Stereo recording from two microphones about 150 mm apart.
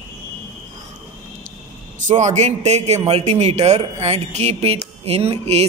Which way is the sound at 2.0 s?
50° right (ahead or behind).